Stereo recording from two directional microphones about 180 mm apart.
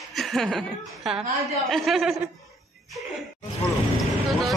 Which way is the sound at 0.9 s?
Centre (ahead or behind).